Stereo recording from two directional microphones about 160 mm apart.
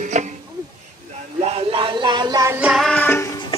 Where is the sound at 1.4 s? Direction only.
40° right (ahead or behind).